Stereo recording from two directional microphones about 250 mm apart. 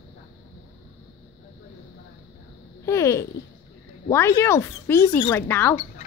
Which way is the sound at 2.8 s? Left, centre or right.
Centre.